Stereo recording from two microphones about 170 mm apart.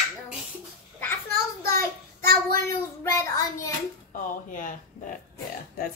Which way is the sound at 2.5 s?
15° left (ahead or behind).